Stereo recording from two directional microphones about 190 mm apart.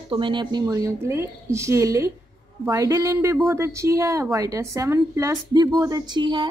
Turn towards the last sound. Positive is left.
turn(degrees=-25)  # may be behind; listen again after turning